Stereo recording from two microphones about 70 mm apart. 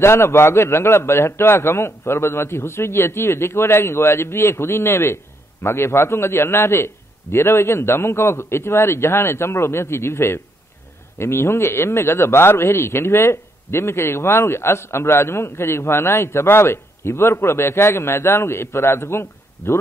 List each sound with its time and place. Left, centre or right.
0.0 s a man's voice: left